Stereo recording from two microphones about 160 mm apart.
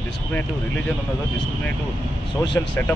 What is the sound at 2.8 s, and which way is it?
Speech, 15° left (ahead or behind).